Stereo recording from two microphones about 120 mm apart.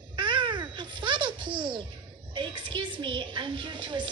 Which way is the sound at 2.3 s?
45° right (ahead or behind).